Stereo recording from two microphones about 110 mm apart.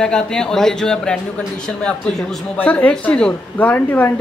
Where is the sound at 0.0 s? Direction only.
5° left (ahead or behind).